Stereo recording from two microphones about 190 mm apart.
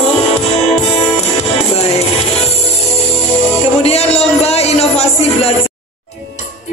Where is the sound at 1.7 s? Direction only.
35° left (ahead or behind).